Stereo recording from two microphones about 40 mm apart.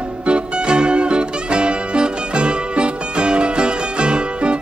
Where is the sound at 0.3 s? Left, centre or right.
Right.